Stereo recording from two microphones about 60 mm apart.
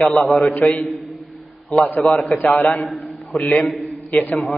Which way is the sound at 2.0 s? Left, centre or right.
Left.